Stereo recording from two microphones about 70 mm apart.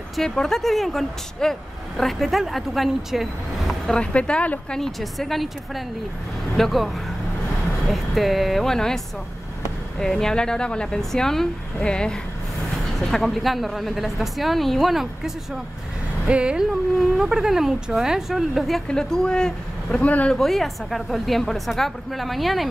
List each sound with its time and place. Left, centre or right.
0.1 s speech: centre
3.8 s speech: centre
4.7 s speech: centre
6.5 s speech: centre
18.9 s speech: centre
20.1 s speech: left
20.3 s speech: centre